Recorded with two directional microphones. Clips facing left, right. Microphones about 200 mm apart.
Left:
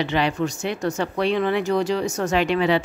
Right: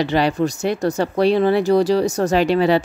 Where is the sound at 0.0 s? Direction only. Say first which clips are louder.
Right 4 dB; 40° right (ahead or behind).